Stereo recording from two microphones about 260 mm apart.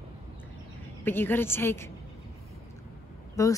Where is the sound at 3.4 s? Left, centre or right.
Centre.